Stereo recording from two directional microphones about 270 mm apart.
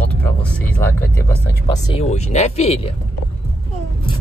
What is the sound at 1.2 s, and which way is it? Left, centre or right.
Speech, centre.